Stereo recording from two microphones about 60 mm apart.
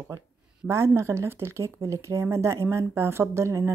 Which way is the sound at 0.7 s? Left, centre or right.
Right.